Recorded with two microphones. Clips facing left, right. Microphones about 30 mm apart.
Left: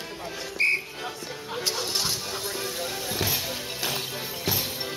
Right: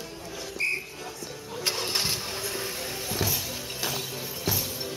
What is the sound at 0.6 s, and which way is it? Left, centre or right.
Whistle, left.